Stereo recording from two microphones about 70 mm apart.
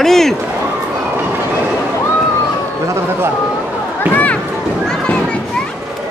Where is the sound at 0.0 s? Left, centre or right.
Centre.